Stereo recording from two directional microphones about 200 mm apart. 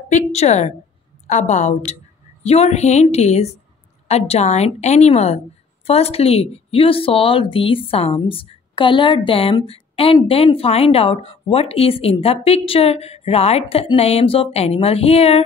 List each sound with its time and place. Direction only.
0.1 s a woman's voice: 35° left (ahead or behind)